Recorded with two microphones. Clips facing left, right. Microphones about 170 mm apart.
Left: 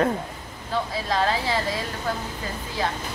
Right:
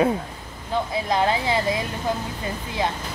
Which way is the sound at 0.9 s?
20° right (ahead or behind).